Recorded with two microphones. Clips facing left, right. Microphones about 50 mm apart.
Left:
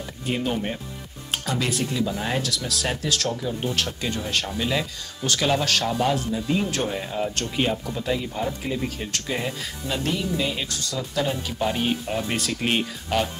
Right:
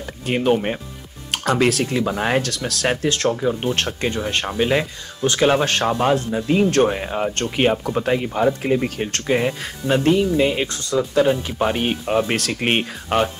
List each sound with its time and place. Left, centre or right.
0.3 s speech: right
1.3 s music: right
1.7 s speech: right
2.0 s speech: right
5.5 s speech: right